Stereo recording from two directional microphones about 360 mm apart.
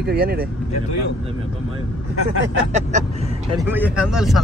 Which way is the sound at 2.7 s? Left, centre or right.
Centre.